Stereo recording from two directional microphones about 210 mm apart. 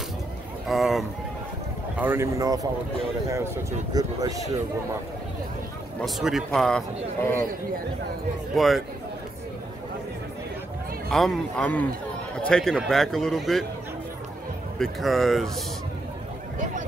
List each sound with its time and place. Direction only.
0.7 s speech: centre (ahead or behind)
2.0 s speech: 10° right (ahead or behind)
3.9 s speech: 15° right (ahead or behind)
5.9 s speech: centre (ahead or behind)
8.5 s speech: centre (ahead or behind)
11.1 s speech: centre (ahead or behind)
14.8 s speech: centre (ahead or behind)